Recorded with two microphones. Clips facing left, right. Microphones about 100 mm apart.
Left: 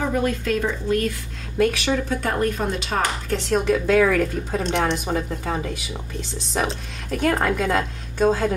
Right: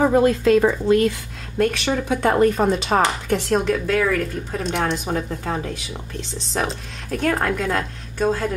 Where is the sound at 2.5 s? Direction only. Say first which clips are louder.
Right 6 dB; 45° right (ahead or behind).